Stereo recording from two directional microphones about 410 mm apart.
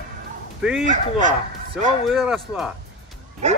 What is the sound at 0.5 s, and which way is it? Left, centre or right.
Speech, centre.